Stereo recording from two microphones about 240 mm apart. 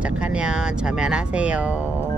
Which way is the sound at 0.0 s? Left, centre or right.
Centre.